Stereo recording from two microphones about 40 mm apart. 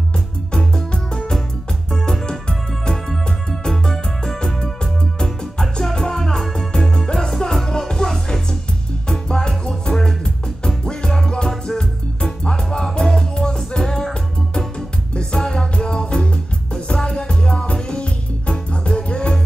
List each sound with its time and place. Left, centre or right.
0.5 s music: centre
15.1 s music: centre